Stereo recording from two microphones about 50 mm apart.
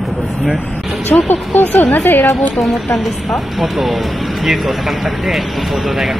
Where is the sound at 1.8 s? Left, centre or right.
Left.